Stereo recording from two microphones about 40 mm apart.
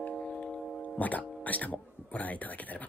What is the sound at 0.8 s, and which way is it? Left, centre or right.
Speech, left.